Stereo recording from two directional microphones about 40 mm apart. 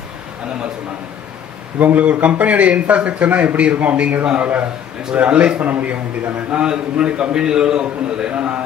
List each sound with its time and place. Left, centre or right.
1.8 s a man's voice: right
5.6 s a man's voice: right
6.5 s a man's voice: right